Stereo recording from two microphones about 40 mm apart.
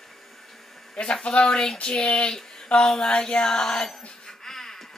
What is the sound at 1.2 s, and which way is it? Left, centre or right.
Speech, centre.